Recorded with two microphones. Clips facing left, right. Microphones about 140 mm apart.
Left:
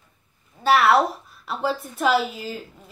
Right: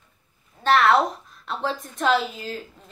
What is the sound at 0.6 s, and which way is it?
A woman's voice, 10° left (ahead or behind).